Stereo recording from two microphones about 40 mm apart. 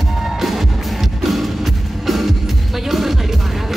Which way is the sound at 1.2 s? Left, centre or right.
Centre.